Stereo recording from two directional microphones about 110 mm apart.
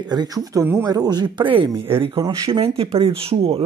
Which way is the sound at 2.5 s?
65° right (ahead or behind).